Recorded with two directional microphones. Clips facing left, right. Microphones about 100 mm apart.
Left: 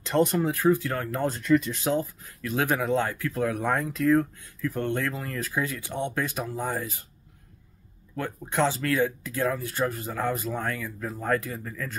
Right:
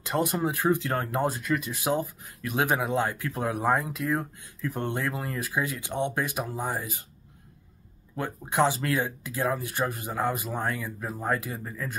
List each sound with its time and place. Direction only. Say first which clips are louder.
0.0 s speech: left 3 dB; 10° right (ahead or behind)
8.2 s speech: right 1 dB; 15° right (ahead or behind)